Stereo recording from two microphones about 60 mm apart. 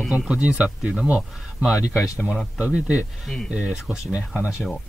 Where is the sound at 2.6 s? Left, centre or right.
Right.